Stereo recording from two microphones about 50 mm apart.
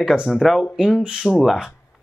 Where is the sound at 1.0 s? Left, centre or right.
Right.